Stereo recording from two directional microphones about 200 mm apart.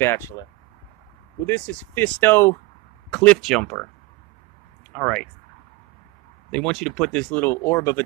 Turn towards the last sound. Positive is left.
turn(degrees=15)  # may be behind; listen again after turning